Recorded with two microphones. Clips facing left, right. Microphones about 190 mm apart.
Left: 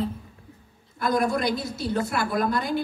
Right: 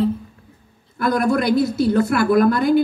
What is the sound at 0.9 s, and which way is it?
A man's voice, 65° right (ahead or behind).